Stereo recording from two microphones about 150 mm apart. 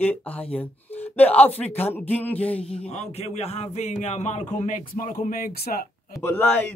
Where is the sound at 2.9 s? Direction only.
45° left (ahead or behind); by 5.8 s 85° left.